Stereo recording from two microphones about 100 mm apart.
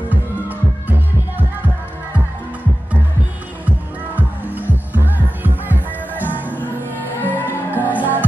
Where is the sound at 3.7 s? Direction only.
15° right (ahead or behind).